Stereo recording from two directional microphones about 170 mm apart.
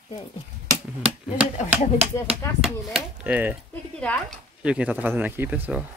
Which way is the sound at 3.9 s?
5° left (ahead or behind).